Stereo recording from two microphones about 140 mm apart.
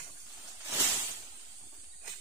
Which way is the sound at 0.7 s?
15° right (ahead or behind).